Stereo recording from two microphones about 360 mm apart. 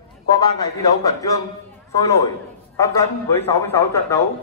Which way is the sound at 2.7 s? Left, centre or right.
Centre.